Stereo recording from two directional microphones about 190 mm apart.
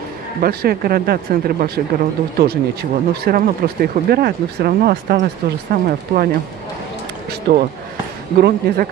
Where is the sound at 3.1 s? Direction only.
55° right (ahead or behind).